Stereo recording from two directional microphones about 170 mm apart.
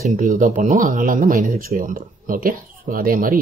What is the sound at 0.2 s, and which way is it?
Speech, 55° right (ahead or behind).